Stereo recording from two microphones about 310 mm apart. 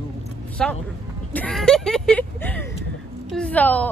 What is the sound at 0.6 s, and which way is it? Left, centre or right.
A woman's voice, centre.